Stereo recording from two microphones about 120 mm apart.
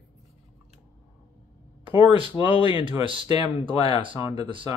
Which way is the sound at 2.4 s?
35° left (ahead or behind).